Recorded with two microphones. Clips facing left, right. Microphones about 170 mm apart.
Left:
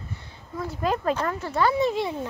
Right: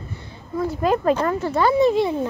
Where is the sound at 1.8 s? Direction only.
40° right (ahead or behind).